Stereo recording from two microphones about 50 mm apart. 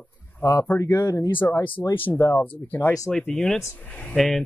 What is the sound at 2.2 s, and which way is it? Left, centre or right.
Speech, left.